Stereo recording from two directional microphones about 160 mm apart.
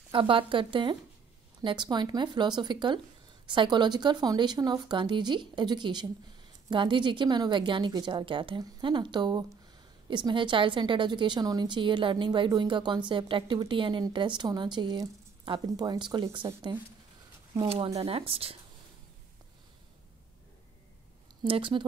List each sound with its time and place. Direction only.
0.1 s a woman's voice: 30° right (ahead or behind)
17.9 s speech: 35° right (ahead or behind)
21.5 s speech: 30° right (ahead or behind)